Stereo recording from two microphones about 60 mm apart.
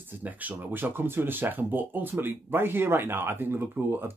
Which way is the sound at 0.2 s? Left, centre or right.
Right.